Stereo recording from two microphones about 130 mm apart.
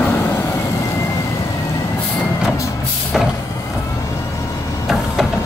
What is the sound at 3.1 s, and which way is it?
Vehicle, centre (ahead or behind).